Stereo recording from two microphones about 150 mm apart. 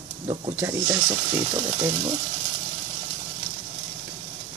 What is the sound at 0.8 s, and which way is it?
Speech, 25° right (ahead or behind).